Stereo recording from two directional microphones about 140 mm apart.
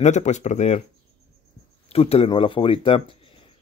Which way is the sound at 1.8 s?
45° left (ahead or behind).